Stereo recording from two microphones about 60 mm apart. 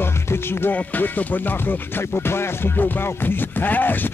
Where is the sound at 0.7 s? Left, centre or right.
Left.